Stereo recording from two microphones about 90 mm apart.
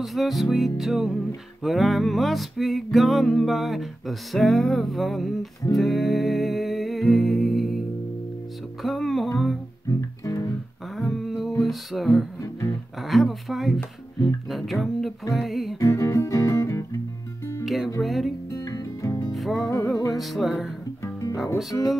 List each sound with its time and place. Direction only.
0.0 s music: centre (ahead or behind)
8.8 s music: centre (ahead or behind)
9.8 s music: 35° left (ahead or behind)
11.0 s a sound: centre (ahead or behind)
11.6 s music: centre (ahead or behind)
12.4 s music: 35° left (ahead or behind)
13.0 s music: centre (ahead or behind)
15.8 s music: 35° left (ahead or behind)
17.6 s speech: centre (ahead or behind)
18.0 s music: centre (ahead or behind)
18.5 s music: 35° left (ahead or behind)
19.3 s music: centre (ahead or behind)
21.0 s music: 35° left (ahead or behind)